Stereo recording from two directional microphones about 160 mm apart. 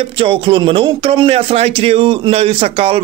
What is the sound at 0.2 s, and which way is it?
A man's voice, 35° right (ahead or behind).